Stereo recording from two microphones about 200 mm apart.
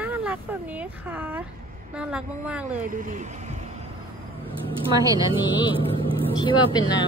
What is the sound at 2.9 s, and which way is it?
Speech, 40° right (ahead or behind).